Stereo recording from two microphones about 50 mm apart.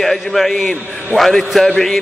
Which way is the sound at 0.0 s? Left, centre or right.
Centre.